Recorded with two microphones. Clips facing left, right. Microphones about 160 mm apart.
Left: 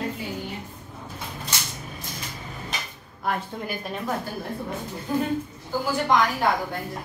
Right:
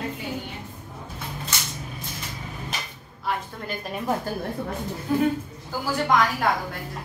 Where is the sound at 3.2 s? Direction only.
50° left (ahead or behind).